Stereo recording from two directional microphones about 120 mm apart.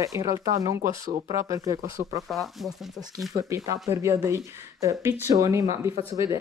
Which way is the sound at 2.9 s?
30° right (ahead or behind).